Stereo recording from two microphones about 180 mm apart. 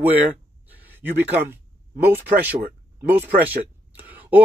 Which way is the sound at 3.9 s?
10° right (ahead or behind).